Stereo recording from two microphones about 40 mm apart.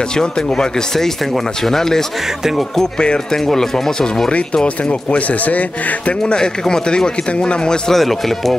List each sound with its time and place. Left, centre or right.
0.2 s speech: centre
3.4 s speech: centre
5.1 s speech: left
6.2 s speech: left
7.9 s speech: centre